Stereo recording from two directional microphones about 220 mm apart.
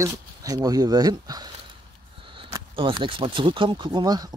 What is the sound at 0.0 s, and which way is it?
Speech, 15° right (ahead or behind).